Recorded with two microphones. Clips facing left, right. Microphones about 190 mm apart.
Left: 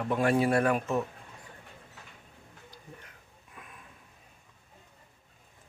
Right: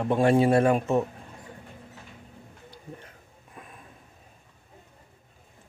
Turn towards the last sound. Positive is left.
turn(degrees=-35)  # may be behind; listen again after turning